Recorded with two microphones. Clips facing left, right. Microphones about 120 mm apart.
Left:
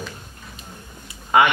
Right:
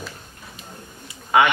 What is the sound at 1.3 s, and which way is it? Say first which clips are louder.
Speech: left 1 dB; centre (ahead or behind).